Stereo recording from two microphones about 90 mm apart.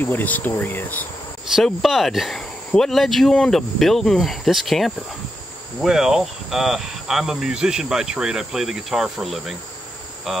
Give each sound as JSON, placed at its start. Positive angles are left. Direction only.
{"t": 0.0, "sound": "cricket", "side_deg": 20}
{"t": 1.5, "sound": "speech", "side_deg": 0}